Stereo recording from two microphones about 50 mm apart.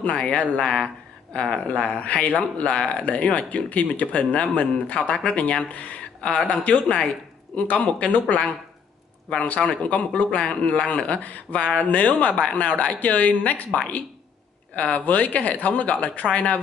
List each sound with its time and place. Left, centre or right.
0.0 s speech: left
3.1 s speech: left
6.4 s speech: left
9.4 s speech: left
14.8 s speech: left